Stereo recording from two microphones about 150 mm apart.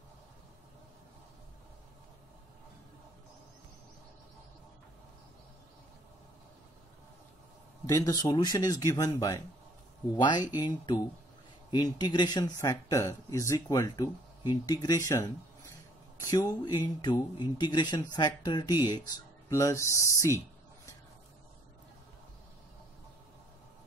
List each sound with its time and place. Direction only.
7.8 s speech: 25° left (ahead or behind)